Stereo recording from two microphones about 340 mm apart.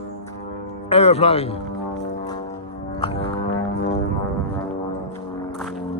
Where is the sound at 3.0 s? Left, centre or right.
Centre.